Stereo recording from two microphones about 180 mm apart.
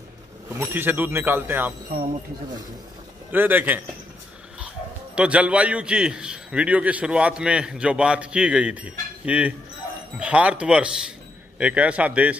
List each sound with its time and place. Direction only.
0.5 s a man's voice: 10° right (ahead or behind)
1.9 s speech: 55° right (ahead or behind)
3.3 s a man's voice: 10° right (ahead or behind)
5.1 s a man's voice: 5° right (ahead or behind)